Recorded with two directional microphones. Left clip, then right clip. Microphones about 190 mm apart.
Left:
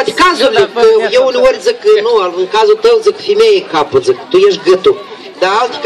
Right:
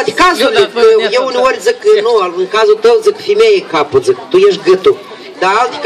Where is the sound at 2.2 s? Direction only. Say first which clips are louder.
Left 1 dB; 10° left (ahead or behind).